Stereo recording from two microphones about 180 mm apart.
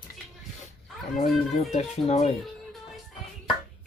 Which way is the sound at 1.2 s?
40° left (ahead or behind).